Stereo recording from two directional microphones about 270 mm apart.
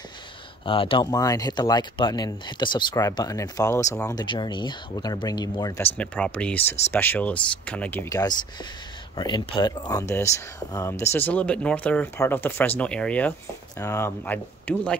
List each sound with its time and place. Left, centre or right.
0.7 s speech: centre